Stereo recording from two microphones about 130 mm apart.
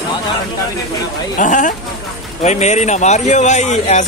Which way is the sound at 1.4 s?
80° left.